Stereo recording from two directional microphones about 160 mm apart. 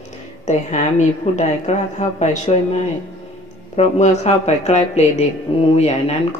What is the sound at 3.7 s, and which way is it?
A woman's voice, 45° left (ahead or behind).